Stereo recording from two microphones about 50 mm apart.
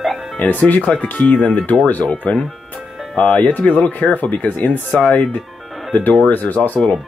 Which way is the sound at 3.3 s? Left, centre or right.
Left.